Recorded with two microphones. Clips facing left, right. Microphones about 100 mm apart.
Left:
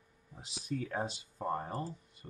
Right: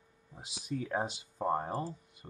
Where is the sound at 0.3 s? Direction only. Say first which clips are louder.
Even; 15° right (ahead or behind).